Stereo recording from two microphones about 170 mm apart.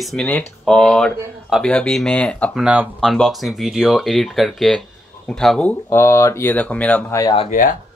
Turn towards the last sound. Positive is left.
turn(degrees=50)  # may be behind; listen again after turning